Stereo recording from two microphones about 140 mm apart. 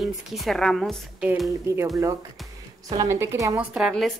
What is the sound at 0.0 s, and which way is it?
Speech, centre (ahead or behind).